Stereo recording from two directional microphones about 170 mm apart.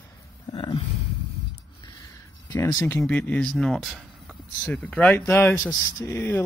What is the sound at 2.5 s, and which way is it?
Speech, 20° left (ahead or behind).